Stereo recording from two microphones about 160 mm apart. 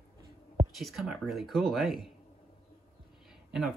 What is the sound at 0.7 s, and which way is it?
Speech, centre (ahead or behind).